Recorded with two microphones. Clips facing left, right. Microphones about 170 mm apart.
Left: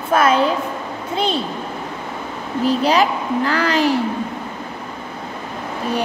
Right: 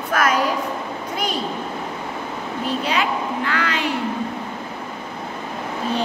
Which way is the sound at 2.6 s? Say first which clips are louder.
Left 7 dB; 40° left (ahead or behind).